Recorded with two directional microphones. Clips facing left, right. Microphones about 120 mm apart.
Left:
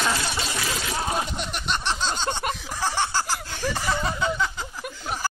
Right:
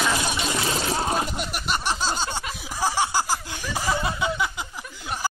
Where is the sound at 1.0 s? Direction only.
Centre (ahead or behind).